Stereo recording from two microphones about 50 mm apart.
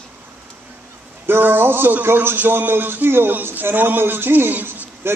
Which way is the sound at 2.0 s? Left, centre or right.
Right.